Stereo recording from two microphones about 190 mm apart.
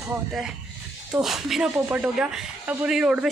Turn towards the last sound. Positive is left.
turn(degrees=-5)  # may be behind; listen again after turning